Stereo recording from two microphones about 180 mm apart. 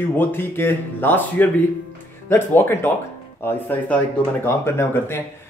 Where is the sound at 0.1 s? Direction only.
10° left (ahead or behind).